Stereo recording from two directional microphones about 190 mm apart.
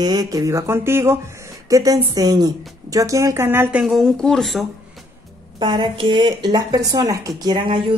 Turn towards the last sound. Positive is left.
turn(degrees=-25)  # may be behind; listen again after turning